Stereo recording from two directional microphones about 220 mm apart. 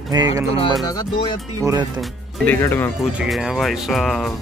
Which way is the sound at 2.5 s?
10° left (ahead or behind).